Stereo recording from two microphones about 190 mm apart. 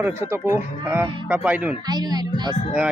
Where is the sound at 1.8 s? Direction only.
20° right (ahead or behind).